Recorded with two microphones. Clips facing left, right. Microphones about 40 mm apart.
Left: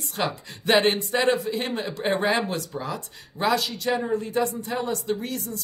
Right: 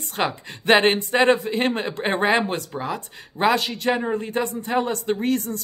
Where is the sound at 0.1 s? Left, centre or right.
Right.